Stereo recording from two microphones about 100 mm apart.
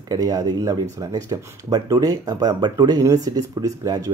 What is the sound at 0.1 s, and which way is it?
Speech, 35° right (ahead or behind).